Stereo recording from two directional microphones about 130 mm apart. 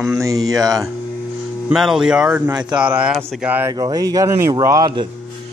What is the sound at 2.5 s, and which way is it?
Speech, 35° right (ahead or behind).